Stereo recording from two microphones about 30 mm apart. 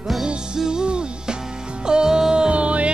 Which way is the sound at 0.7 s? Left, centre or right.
Right.